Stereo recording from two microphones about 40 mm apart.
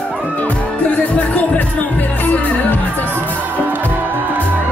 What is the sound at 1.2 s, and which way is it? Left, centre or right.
Music, left.